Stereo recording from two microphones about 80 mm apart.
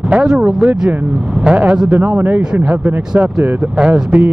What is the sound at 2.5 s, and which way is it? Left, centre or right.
Speech, centre.